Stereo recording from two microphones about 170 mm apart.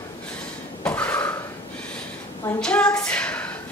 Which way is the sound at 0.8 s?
10° left (ahead or behind).